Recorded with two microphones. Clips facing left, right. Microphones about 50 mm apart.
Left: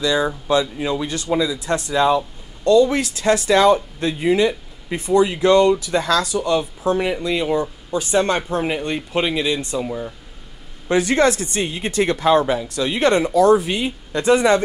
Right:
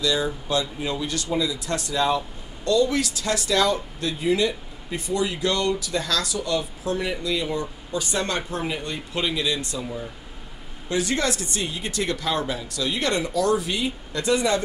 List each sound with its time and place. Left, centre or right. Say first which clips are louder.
0.0 s speech: left 5 dB; left